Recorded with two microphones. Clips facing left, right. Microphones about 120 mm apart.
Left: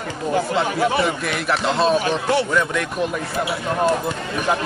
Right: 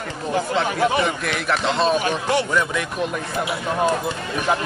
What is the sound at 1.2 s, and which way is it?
Speech, 5° left (ahead or behind).